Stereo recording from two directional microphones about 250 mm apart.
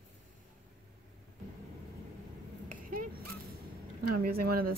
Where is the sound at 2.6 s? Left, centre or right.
Right.